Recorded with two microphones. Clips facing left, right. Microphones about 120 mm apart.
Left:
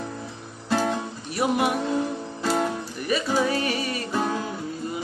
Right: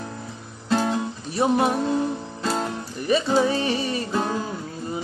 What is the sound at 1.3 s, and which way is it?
Music, 30° right (ahead or behind).